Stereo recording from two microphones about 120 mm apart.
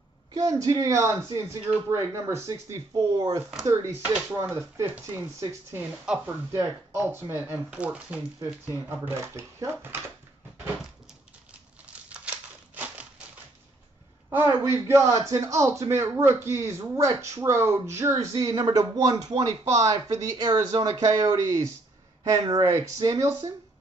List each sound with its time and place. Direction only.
0.3 s a man's voice: 30° right (ahead or behind)
11.8 s crumpling: 10° right (ahead or behind)
14.3 s a man's voice: 20° right (ahead or behind)